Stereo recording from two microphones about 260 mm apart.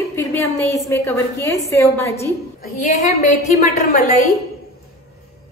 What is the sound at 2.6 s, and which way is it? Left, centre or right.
A woman's voice, left.